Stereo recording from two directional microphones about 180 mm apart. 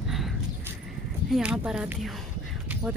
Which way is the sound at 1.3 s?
5° right (ahead or behind).